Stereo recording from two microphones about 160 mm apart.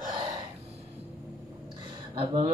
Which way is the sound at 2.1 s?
30° right (ahead or behind).